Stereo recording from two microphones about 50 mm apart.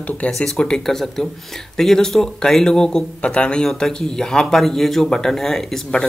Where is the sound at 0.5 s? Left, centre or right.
Centre.